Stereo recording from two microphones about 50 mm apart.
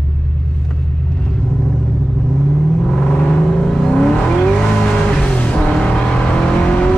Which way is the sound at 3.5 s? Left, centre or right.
Centre.